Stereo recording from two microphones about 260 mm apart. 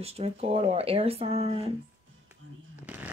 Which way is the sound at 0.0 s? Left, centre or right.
Right.